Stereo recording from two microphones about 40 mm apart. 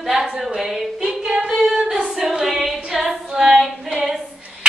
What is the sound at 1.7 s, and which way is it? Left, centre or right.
Female singing, centre.